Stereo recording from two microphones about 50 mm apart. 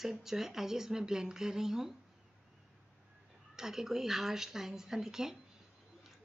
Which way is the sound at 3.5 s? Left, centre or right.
Centre.